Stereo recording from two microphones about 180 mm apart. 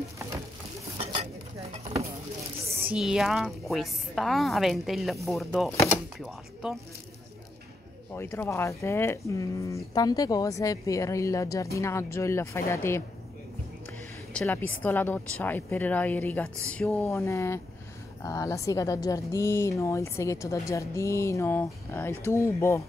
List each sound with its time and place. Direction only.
0.9 s stir: 35° right (ahead or behind)
2.7 s a woman's voice: 10° right (ahead or behind)
8.1 s a woman's voice: 15° left (ahead or behind)
14.3 s a woman's voice: 10° left (ahead or behind)